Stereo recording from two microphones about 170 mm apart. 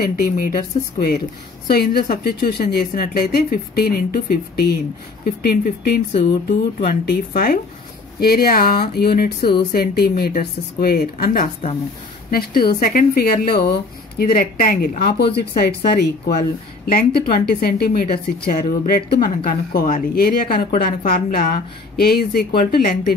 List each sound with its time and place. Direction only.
0.1 s a woman's voice: 60° left (ahead or behind)